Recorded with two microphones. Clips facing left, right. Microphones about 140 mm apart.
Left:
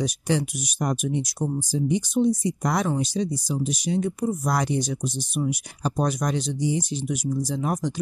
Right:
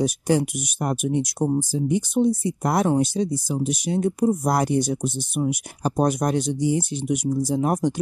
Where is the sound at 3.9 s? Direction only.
50° right (ahead or behind).